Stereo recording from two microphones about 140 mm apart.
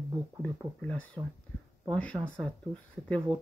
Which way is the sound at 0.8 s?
10° left (ahead or behind).